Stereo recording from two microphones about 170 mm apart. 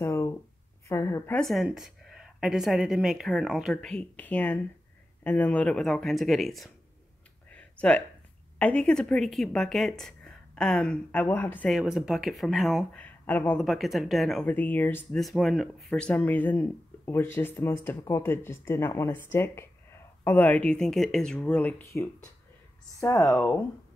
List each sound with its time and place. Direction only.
0.0 s a sound: 15° left (ahead or behind)
0.8 s a woman's voice: 15° left (ahead or behind)
1.4 s speech: centre (ahead or behind)
7.4 s a sound: 5° left (ahead or behind)
8.5 s speech: 5° left (ahead or behind)
11.7 s speech: 5° right (ahead or behind)
13.0 s speech: 10° left (ahead or behind)
13.7 s speech: centre (ahead or behind)
15.1 s speech: centre (ahead or behind)